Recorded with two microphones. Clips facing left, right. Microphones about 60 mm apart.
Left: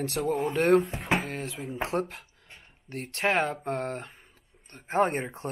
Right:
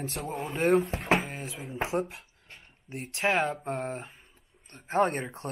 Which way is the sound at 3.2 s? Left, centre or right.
Centre.